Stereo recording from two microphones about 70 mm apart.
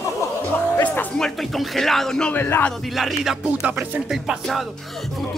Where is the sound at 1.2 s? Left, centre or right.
Centre.